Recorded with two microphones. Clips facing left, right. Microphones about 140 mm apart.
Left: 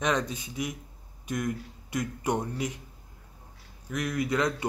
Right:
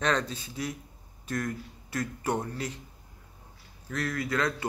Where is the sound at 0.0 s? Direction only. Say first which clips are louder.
Even; 15° left (ahead or behind).